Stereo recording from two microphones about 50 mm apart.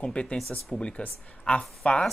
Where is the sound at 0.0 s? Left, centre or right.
Left.